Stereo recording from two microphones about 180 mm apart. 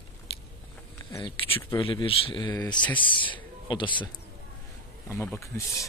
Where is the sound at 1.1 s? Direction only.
25° left (ahead or behind).